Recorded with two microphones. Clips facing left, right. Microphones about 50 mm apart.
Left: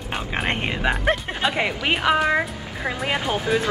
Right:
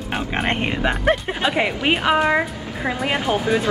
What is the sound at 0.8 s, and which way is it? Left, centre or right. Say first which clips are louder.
A woman's voice: right 2 dB; centre.